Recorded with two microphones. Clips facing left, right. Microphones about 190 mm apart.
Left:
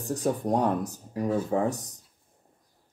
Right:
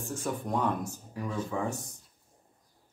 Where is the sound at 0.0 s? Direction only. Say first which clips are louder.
Left 7 dB; 40° left (ahead or behind).